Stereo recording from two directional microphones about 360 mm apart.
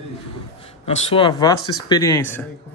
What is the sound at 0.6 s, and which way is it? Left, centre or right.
A woman's voice, centre.